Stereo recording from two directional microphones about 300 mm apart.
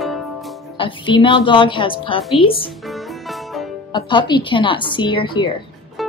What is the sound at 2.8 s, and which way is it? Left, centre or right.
Music, centre.